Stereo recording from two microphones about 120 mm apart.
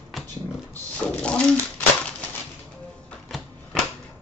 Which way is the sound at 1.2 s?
10° left (ahead or behind).